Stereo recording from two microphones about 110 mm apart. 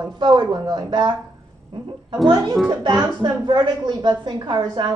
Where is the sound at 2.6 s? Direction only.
40° right (ahead or behind).